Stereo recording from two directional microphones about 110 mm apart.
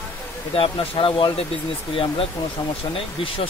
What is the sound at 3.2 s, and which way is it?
Speech, 55° left (ahead or behind).